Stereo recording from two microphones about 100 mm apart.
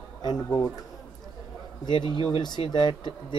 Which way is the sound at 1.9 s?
50° left (ahead or behind).